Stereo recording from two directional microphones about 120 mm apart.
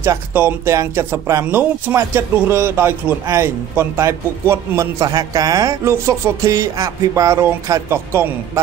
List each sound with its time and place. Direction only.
0.0 s speech: 20° right (ahead or behind)